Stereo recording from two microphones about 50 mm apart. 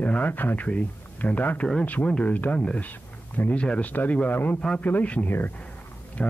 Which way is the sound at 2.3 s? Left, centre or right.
Left.